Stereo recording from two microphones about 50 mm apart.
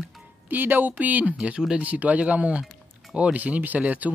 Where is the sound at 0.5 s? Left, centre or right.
Right.